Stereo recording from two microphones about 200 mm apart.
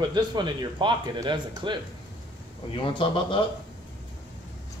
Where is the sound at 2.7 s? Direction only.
25° left (ahead or behind).